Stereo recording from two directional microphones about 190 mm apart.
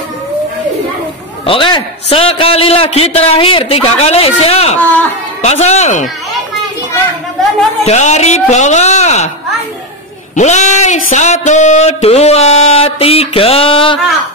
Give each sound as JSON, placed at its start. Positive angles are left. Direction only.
{"t": 1.4, "sound": "speech", "side_deg": 30}
{"t": 7.8, "sound": "speech", "side_deg": 35}
{"t": 10.3, "sound": "speech", "side_deg": 40}